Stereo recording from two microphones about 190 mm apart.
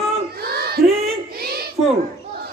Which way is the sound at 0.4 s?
55° right (ahead or behind).